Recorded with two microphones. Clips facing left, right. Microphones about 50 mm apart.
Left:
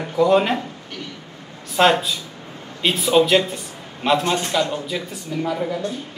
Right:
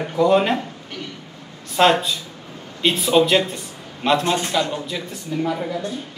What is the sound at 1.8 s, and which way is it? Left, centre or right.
A man's voice, centre.